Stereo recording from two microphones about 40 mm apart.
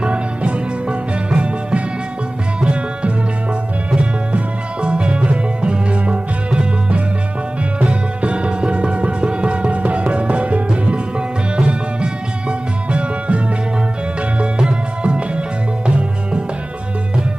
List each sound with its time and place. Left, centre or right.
0.0 s music: right
14.4 s music: right